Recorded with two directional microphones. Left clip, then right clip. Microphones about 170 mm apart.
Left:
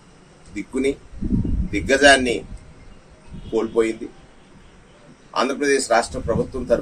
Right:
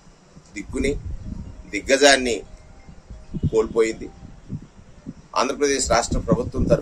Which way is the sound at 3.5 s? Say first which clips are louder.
Right 1 dB; 20° right (ahead or behind).